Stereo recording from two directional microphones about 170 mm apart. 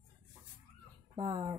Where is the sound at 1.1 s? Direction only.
25° right (ahead or behind).